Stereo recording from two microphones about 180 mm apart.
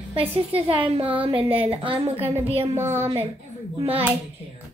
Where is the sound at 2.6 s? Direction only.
10° right (ahead or behind).